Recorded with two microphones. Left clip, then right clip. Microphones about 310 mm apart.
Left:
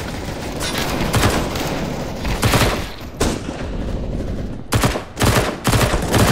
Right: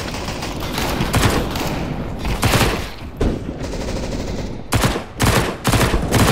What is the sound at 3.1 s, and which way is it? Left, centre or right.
Thump, left.